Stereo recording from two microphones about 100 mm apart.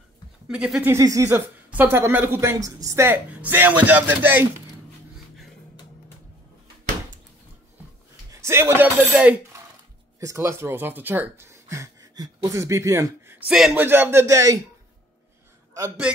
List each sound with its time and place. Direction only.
0.5 s speech: 10° right (ahead or behind)
0.8 s a woman's voice: 35° right (ahead or behind)
1.3 s speech: 20° right (ahead or behind)
2.6 s a woman's voice: 35° right (ahead or behind)
3.1 s speech: 20° right (ahead or behind)
8.3 s speech: 25° right (ahead or behind)
10.2 s speech: 30° right (ahead or behind)
11.5 s speech: 30° right (ahead or behind)
13.5 s speech: 5° right (ahead or behind)
13.7 s speech: 20° right (ahead or behind)
14.2 s a woman's voice: 35° right (ahead or behind)